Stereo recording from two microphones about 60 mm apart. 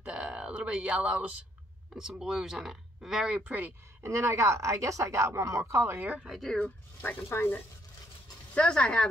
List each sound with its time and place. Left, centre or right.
0.0 s speech: centre
4.0 s a woman's voice: right
5.9 s a woman's voice: right
6.2 s speech: centre
6.5 s speech: left
8.5 s speech: centre